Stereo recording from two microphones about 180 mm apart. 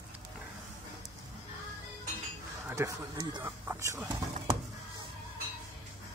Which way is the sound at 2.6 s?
15° right (ahead or behind).